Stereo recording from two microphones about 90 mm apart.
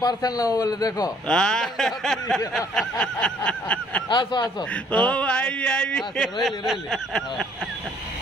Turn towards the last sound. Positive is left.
turn(degrees=0)  # may be behind; listen again after turning